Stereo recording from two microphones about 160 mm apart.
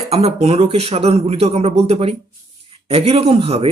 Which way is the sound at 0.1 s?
40° right (ahead or behind).